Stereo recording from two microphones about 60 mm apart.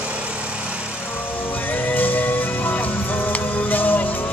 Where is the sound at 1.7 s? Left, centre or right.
Left.